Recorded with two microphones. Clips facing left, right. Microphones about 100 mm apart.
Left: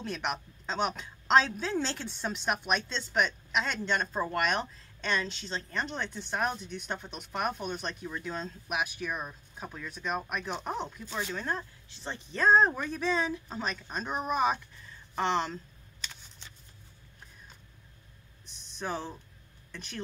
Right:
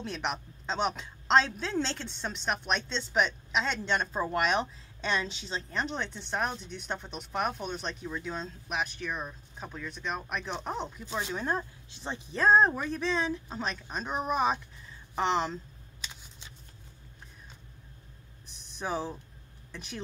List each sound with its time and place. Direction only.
0.0 s a woman's voice: centre (ahead or behind)
11.1 s speech: 15° right (ahead or behind)
12.3 s a woman's voice: centre (ahead or behind)
18.8 s a woman's voice: 5° right (ahead or behind)